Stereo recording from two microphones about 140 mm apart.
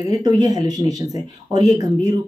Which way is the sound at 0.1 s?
25° right (ahead or behind).